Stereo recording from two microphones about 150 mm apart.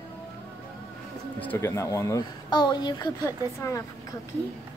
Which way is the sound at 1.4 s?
15° left (ahead or behind).